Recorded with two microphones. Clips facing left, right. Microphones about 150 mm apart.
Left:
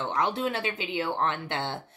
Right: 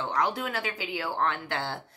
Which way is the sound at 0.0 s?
25° left (ahead or behind).